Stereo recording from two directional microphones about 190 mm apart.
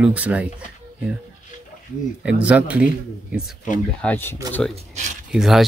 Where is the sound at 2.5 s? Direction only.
5° right (ahead or behind).